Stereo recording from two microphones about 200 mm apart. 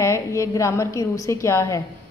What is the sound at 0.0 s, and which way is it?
A woman's voice, 15° left (ahead or behind).